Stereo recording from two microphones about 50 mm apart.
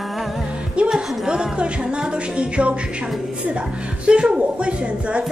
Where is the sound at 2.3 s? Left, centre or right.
Right.